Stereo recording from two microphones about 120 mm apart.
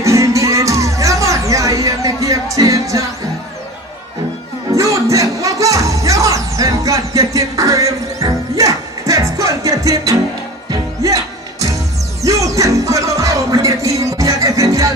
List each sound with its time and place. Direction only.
0.0 s music: 25° right (ahead or behind)
4.7 s music: 25° right (ahead or behind)